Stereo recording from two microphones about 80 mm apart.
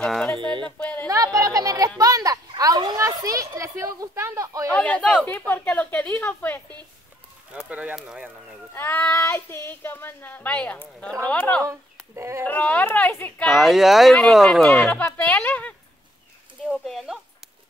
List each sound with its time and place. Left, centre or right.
0.0 s a sound: centre
0.4 s a sound: right
0.7 s speech: centre
1.0 s speech: right
3.0 s speech: right
4.6 s speech: centre
7.5 s speech: centre
8.7 s speech: left
12.2 s speech: right
12.4 s speech: centre
13.5 s speech: centre
15.0 s speech: centre
16.7 s speech: centre